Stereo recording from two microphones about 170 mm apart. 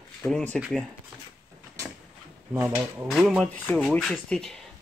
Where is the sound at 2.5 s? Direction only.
10° right (ahead or behind).